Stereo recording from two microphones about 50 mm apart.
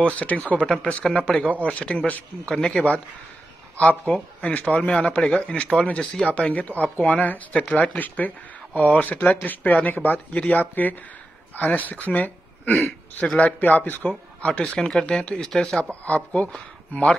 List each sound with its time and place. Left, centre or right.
0.0 s speech: left
1.0 s speech: centre
2.5 s speech: centre
4.0 s speech: left
12.1 s a sound: left
13.4 s speech: left
14.4 s speech: left
16.1 s speech: left